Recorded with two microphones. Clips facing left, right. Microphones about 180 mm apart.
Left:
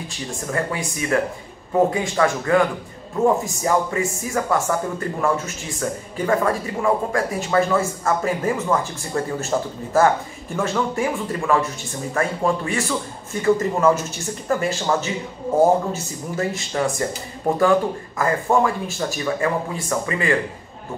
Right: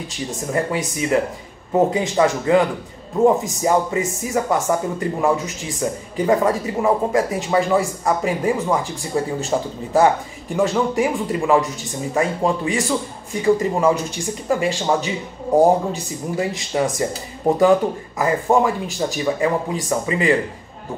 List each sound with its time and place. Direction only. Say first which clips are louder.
0.5 s a man's voice: right 3 dB; 20° right (ahead or behind)
3.6 s a man's voice: right 2 dB; 20° right (ahead or behind)